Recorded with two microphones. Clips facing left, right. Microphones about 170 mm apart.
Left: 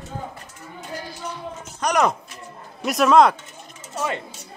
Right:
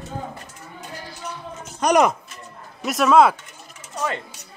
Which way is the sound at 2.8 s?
Centre (ahead or behind).